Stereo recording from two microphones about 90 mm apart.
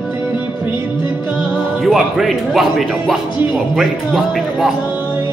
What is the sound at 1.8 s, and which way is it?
Speech, 5° right (ahead or behind).